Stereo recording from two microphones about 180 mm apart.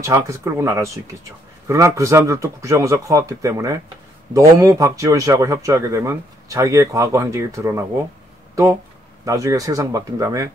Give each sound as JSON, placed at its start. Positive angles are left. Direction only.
{"t": 0.0, "sound": "a man's voice", "side_deg": -15}
{"t": 9.2, "sound": "a man's voice", "side_deg": -20}